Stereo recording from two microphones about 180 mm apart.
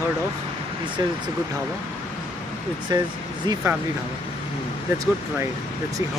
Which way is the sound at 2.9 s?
20° right (ahead or behind).